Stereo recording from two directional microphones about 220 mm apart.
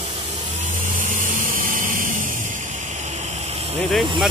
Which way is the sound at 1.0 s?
35° right (ahead or behind).